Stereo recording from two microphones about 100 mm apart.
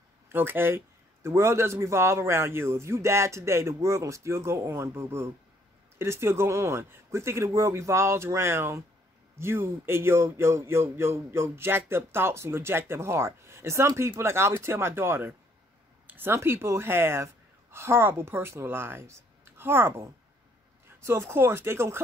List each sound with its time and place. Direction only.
0.3 s speech: 20° right (ahead or behind)